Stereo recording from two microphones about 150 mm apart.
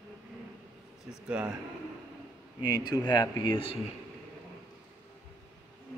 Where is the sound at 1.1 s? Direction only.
5° right (ahead or behind).